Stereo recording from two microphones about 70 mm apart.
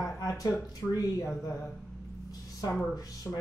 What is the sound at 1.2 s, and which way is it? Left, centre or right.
Speech, left.